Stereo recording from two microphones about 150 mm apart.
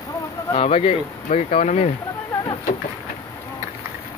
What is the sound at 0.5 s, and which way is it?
Speech, 40° left (ahead or behind).